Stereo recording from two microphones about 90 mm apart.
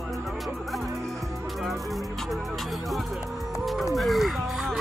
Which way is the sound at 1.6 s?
Centre (ahead or behind).